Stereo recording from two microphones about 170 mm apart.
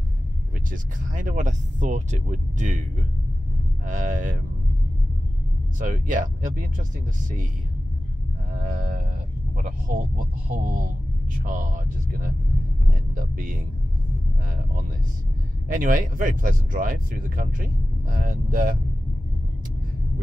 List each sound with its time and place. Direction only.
0.7 s speech: 50° right (ahead or behind)
3.8 s speech: 50° right (ahead or behind)
5.8 s speech: 50° right (ahead or behind)
8.7 s a sound: 55° right (ahead or behind)
9.6 s speech: 50° right (ahead or behind)
13.1 s speech: 55° right (ahead or behind)